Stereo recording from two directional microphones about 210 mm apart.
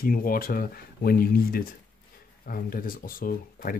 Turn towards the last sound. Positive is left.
turn(degrees=45)  # may be behind; listen again after turning